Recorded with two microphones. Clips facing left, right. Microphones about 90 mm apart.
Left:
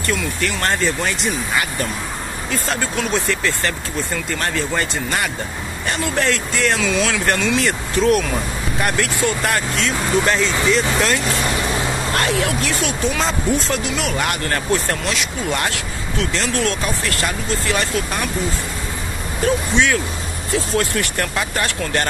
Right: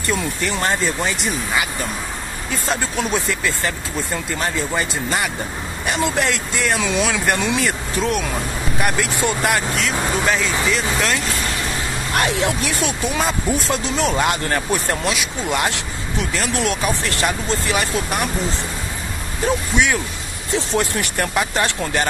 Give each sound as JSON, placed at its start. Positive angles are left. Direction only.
{"t": 0.4, "sound": "speech", "side_deg": -10}
{"t": 7.6, "sound": "speech", "side_deg": -5}
{"t": 8.8, "sound": "speech", "side_deg": -15}
{"t": 9.8, "sound": "speech", "side_deg": -5}
{"t": 12.1, "sound": "speech", "side_deg": -20}
{"t": 13.2, "sound": "speech", "side_deg": -10}
{"t": 13.8, "sound": "speech", "side_deg": -35}
{"t": 14.2, "sound": "speech", "side_deg": -20}
{"t": 19.4, "sound": "speech", "side_deg": -20}